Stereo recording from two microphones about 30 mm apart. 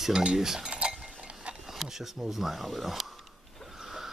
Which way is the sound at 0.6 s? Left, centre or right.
Right.